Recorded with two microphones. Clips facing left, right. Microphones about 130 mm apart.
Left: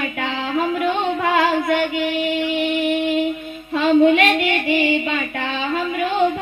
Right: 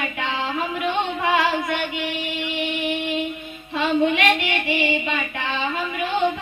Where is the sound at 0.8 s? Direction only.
45° left (ahead or behind).